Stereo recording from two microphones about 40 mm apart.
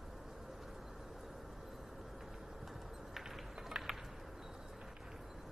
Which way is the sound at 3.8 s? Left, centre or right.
Right.